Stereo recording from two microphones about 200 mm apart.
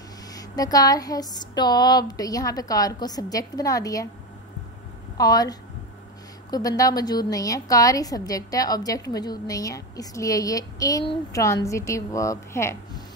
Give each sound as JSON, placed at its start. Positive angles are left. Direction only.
{"t": 0.3, "sound": "a woman's voice", "side_deg": 20}
{"t": 5.1, "sound": "a woman's voice", "side_deg": 20}